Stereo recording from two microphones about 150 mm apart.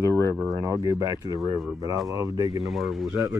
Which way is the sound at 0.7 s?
20° right (ahead or behind).